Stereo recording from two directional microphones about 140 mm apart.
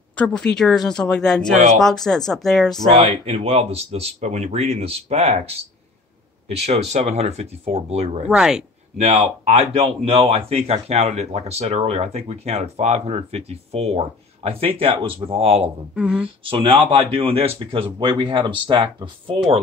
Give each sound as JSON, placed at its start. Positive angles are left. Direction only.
{"t": 0.1, "sound": "speech", "side_deg": 10}
{"t": 3.0, "sound": "speech", "side_deg": -45}
{"t": 6.6, "sound": "speech", "side_deg": -50}
{"t": 8.3, "sound": "speech", "side_deg": -5}
{"t": 8.9, "sound": "speech", "side_deg": -50}
{"t": 15.9, "sound": "speech", "side_deg": -5}
{"t": 16.4, "sound": "speech", "side_deg": -40}